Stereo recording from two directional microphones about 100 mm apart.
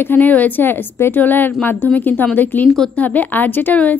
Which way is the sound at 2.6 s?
5° left (ahead or behind).